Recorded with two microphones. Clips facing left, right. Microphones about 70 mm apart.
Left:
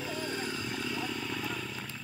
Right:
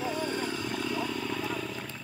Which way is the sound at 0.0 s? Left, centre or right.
Right.